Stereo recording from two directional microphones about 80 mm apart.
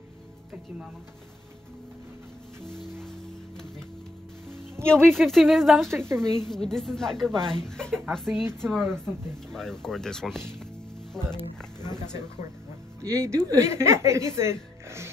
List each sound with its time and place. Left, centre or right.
4.5 s music: right
5.1 s speech: centre
5.9 s speech: right
6.3 s a woman's voice: centre
8.3 s speech: right
8.5 s a woman's voice: centre
13.0 s speech: right